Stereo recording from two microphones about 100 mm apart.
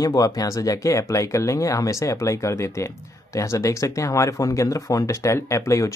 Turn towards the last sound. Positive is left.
turn(degrees=30)  # may be behind; listen again after turning